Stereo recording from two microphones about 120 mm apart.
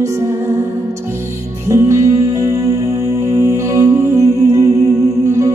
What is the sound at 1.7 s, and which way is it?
Music, 25° right (ahead or behind).